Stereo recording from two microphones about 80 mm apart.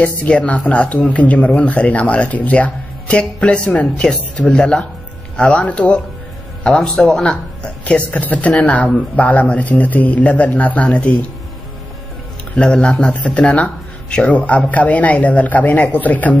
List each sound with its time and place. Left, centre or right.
0.0 s speech: centre
12.5 s speech: centre